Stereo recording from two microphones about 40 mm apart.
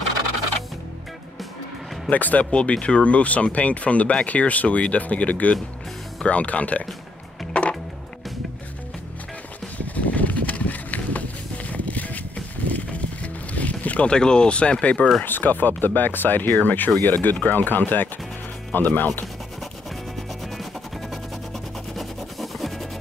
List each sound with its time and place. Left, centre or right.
2.0 s speech: left
2.5 s speech: left
7.5 s music: left
9.8 s a sound: left
12.7 s music: left
14.0 s speech: left
15.2 s speech: left
21.9 s music: centre